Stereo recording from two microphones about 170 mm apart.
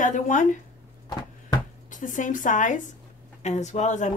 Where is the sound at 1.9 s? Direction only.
50° left (ahead or behind).